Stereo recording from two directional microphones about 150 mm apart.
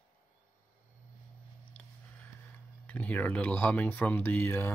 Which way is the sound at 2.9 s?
10° left (ahead or behind).